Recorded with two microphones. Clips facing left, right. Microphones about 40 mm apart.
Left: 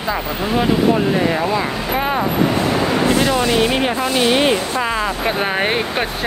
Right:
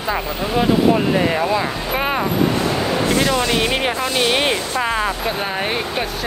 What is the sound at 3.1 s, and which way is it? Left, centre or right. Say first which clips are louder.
Speech: left 2 dB; centre.